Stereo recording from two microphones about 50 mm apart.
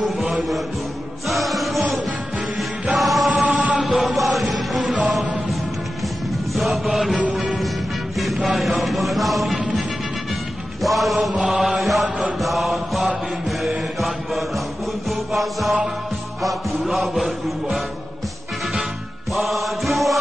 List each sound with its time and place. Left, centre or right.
0.0 s music: centre
1.3 s chant: centre
2.9 s music: centre
3.4 s music: right
3.8 s music: centre
6.5 s mantra: centre
8.2 s music: centre
10.8 s mantra: centre
15.0 s music: centre
19.3 s music: centre